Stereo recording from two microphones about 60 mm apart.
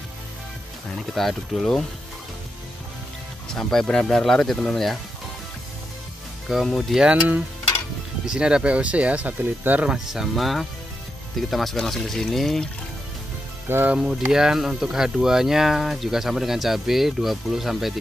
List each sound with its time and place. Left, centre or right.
0.9 s speech: centre
3.5 s speech: centre
6.4 s speech: centre
7.0 s speech: centre
9.8 s speech: centre
13.9 s speech: centre